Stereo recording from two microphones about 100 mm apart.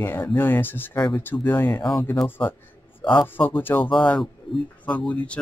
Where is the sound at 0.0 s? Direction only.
20° left (ahead or behind).